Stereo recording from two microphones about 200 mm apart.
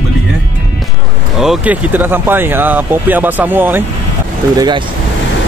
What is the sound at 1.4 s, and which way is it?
Speech, 5° right (ahead or behind).